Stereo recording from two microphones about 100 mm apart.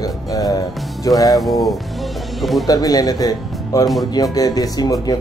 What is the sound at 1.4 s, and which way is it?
Speech, centre (ahead or behind).